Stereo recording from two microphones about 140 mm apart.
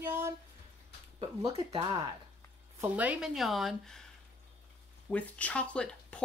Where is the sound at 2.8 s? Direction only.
10° right (ahead or behind).